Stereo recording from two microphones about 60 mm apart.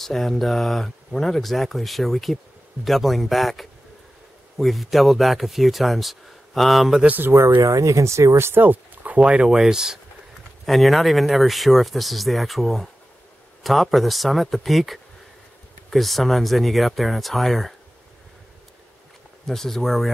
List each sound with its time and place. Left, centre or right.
0.0 s speech: centre
7.3 s speech: right
9.2 s speech: centre
10.6 s speech: centre
19.4 s speech: centre